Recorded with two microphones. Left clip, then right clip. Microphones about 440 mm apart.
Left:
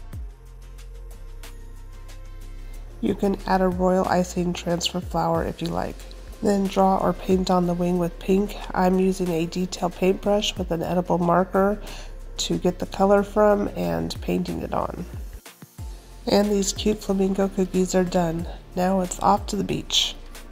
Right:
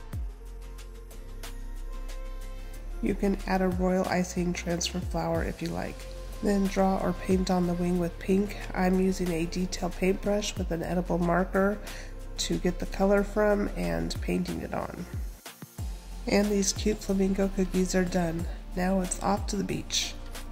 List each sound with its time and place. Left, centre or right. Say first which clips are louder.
3.0 s speech: left 5 dB; centre
8.2 s speech: left 5 dB; centre
8.5 s speech: left 7 dB; centre
16.3 s speech: left 5 dB; centre